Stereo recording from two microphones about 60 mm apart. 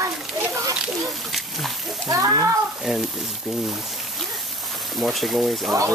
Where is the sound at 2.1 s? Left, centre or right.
Right.